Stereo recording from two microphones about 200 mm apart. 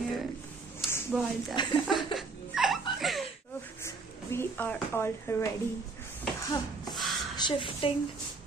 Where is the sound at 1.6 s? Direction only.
20° left (ahead or behind).